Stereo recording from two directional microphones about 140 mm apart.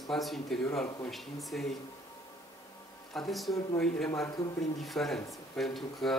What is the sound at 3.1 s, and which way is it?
Speech, centre (ahead or behind).